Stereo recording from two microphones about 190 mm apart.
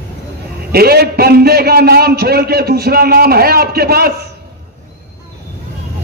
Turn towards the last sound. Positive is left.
turn(degrees=-55)  # may be behind; listen again after turning